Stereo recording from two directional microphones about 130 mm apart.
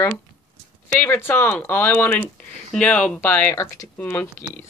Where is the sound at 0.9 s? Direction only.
15° left (ahead or behind).